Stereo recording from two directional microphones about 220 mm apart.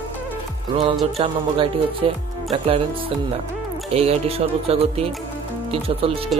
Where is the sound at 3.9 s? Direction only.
25° right (ahead or behind).